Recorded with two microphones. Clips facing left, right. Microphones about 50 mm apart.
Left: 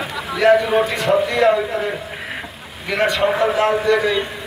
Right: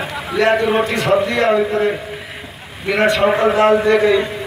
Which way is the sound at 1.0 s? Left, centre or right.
Centre.